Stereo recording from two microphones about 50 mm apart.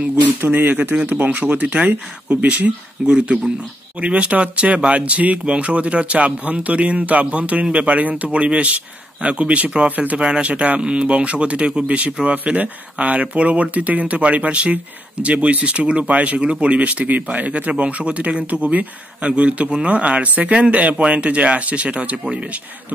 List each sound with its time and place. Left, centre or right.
0.0 s speech: right; by 3.5 s centre
4.0 s speech: right
10.2 s speech: centre